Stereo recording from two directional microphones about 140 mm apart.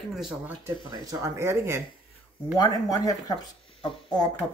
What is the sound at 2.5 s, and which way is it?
Speech, 25° left (ahead or behind).